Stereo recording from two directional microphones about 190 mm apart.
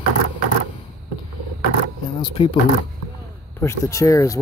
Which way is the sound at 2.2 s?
25° left (ahead or behind).